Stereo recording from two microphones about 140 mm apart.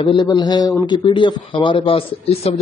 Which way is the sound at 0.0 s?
35° left (ahead or behind).